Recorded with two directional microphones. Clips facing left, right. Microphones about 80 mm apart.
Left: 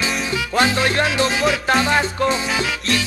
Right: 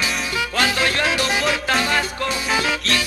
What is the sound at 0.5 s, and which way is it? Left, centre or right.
Music, left.